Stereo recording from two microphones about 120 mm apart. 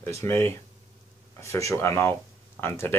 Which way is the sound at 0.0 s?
20° left (ahead or behind).